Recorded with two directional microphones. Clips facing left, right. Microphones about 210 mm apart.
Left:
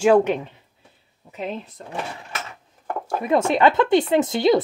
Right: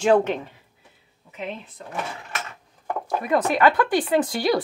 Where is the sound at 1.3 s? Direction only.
40° left (ahead or behind).